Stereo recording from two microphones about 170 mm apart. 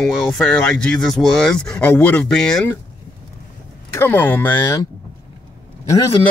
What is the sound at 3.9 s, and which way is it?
Speech, 10° left (ahead or behind).